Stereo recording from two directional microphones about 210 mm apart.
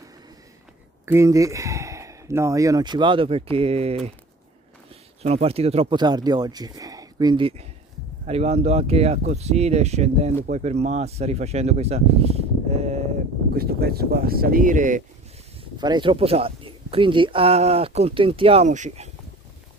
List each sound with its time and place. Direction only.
1.0 s speech: 15° right (ahead or behind); by 4.1 s 30° right (ahead or behind)
5.2 s speech: 30° right (ahead or behind)
13.6 s speech: 45° right (ahead or behind)
15.8 s speech: 20° right (ahead or behind)